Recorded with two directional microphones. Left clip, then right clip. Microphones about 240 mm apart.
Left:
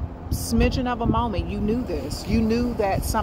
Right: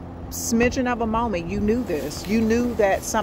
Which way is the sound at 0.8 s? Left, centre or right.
Right.